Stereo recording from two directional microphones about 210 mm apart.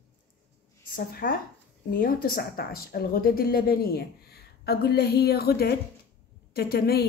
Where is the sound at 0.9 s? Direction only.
45° left (ahead or behind).